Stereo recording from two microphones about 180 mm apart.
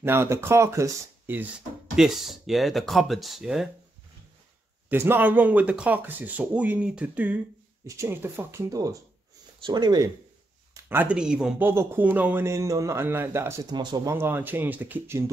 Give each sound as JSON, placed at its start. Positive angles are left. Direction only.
{"t": 0.0, "sound": "speech", "side_deg": -15}
{"t": 4.8, "sound": "speech", "side_deg": -10}
{"t": 10.7, "sound": "speech", "side_deg": -10}